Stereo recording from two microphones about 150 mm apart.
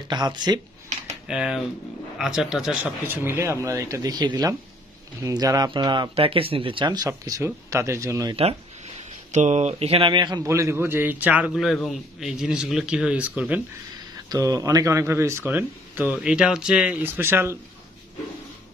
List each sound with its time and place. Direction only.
0.1 s speech: 30° right (ahead or behind)
1.2 s speech: 5° right (ahead or behind); by 8.4 s 20° right (ahead or behind)
9.3 s a man's voice: 50° right (ahead or behind); by 13.6 s 10° right (ahead or behind)
14.3 s a man's voice: 25° right (ahead or behind)